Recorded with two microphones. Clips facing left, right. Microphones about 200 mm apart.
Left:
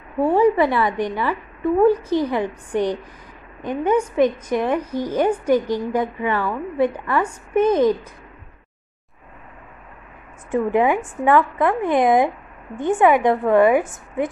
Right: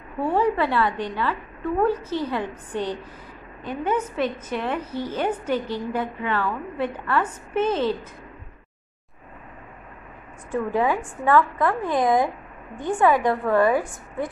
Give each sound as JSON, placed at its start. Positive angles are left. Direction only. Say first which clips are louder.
{"t": 0.3, "sound": "a woman's voice", "louder": "left 5 dB", "side_deg": 15}
{"t": 10.5, "sound": "a woman's voice", "louder": "left 5 dB", "side_deg": 20}